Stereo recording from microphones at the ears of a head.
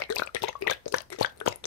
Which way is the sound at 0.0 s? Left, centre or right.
Left.